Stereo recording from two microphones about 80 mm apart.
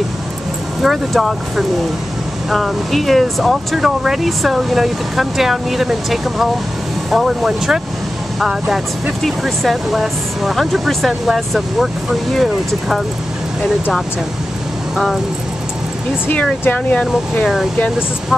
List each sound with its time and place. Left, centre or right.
0.8 s speech: centre
16.6 s speech: centre